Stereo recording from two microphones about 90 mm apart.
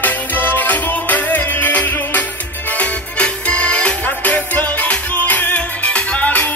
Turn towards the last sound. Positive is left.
turn(degrees=15)  # may be behind; listen again after turning